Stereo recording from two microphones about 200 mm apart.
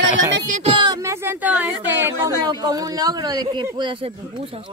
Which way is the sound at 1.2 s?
10° right (ahead or behind).